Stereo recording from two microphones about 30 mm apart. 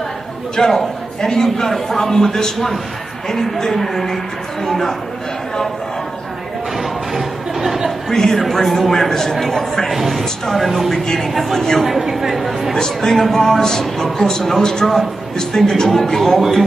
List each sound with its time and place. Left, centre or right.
0.6 s a man's voice: centre
6.8 s music: centre
8.1 s speech: centre
9.9 s speech: centre
11.5 s speech: centre
11.8 s speech: centre
12.7 s a man's voice: centre